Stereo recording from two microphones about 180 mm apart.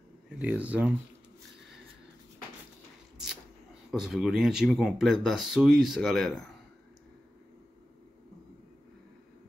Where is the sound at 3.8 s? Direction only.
Centre (ahead or behind).